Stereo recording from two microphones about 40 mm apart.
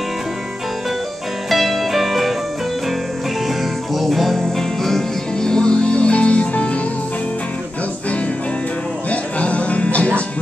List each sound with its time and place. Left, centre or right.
1.5 s music: centre
3.4 s music: centre; by 6.8 s left
9.1 s music: left